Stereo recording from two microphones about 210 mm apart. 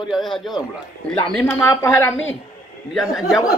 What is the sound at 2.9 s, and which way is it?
Speech, centre (ahead or behind).